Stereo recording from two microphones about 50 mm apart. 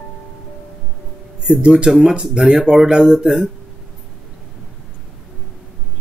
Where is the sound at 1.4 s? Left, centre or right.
Right.